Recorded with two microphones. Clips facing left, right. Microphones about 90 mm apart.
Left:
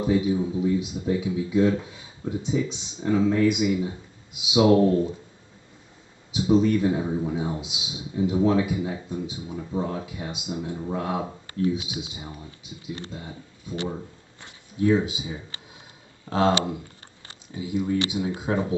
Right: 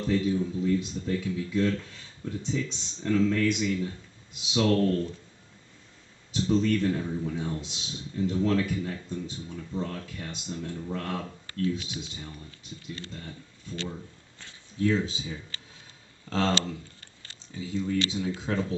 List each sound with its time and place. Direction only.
0.0 s speech: 10° left (ahead or behind)
6.3 s speech: 10° left (ahead or behind)